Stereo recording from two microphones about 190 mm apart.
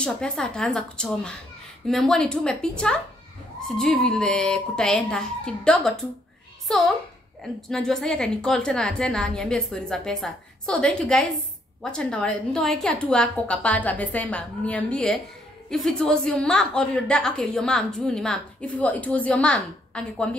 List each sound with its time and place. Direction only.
0.0 s a woman's voice: 5° left (ahead or behind)